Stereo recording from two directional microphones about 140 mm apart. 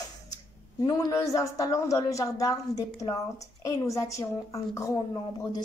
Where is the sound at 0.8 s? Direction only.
25° left (ahead or behind).